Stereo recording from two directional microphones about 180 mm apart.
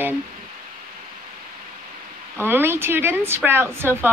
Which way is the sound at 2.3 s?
15° right (ahead or behind).